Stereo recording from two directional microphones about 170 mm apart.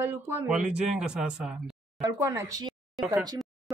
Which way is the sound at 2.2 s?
15° right (ahead or behind).